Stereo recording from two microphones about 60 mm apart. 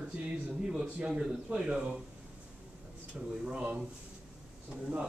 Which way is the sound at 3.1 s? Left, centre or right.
Centre.